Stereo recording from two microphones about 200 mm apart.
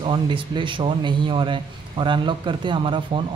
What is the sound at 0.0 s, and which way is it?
A man's voice, 25° right (ahead or behind).